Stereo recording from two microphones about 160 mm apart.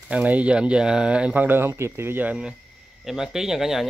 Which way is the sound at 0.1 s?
10° right (ahead or behind).